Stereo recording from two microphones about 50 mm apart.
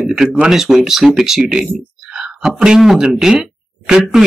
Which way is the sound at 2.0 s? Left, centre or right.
Centre.